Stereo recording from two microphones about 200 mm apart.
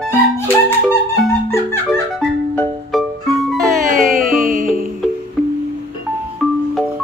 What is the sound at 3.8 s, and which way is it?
Music, 45° right (ahead or behind).